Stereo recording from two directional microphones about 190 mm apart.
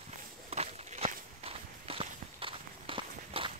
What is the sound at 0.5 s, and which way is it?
Walk, 35° right (ahead or behind).